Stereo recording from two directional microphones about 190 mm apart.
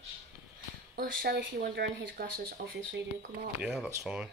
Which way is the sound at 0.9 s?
50° right (ahead or behind).